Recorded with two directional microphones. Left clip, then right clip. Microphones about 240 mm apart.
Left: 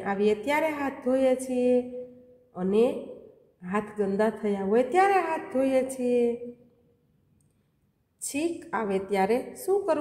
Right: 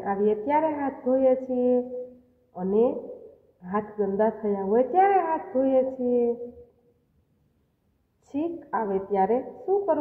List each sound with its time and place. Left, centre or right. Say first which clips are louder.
0.0 s a woman's voice: right 1 dB; left
8.3 s a woman's voice: right 1 dB; left